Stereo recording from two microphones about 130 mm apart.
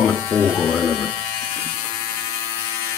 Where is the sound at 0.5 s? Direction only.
Centre (ahead or behind).